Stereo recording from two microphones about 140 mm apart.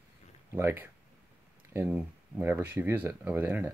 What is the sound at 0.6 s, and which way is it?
Speech, 15° right (ahead or behind).